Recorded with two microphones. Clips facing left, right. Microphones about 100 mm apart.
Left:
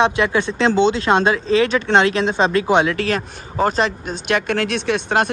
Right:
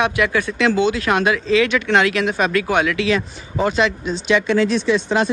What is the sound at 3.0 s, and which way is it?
Speech, 45° left (ahead or behind).